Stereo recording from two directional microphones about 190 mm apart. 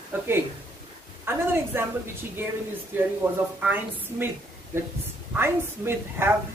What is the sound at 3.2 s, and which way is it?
A woman's voice, 10° right (ahead or behind).